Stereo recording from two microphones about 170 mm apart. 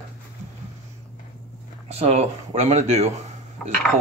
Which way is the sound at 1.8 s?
40° right (ahead or behind).